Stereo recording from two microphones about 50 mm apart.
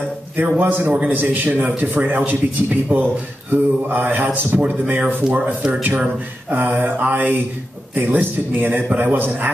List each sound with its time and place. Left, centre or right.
0.4 s a man's voice: right